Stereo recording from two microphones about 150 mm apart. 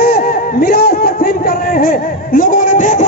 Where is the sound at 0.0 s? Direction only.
90° left.